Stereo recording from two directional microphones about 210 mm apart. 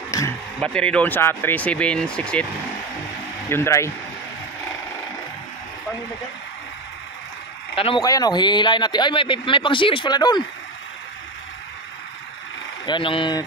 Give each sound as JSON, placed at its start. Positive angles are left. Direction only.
{"t": 0.6, "sound": "speech", "side_deg": 5}
{"t": 3.4, "sound": "speech", "side_deg": 10}
{"t": 7.7, "sound": "a man's voice", "side_deg": 25}
{"t": 12.8, "sound": "a man's voice", "side_deg": 25}